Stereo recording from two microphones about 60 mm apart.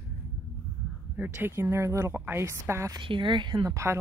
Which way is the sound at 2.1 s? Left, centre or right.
Right.